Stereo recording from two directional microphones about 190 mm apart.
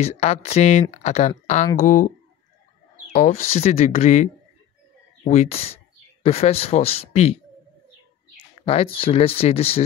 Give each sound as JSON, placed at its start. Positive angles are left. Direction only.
{"t": 0.0, "sound": "speech", "side_deg": 35}
{"t": 8.5, "sound": "speech", "side_deg": 30}